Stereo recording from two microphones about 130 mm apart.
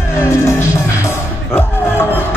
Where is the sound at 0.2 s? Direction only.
20° left (ahead or behind).